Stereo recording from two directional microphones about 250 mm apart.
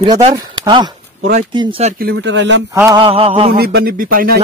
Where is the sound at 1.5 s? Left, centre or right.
Centre.